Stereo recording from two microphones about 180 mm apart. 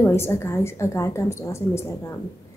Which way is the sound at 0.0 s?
15° left (ahead or behind).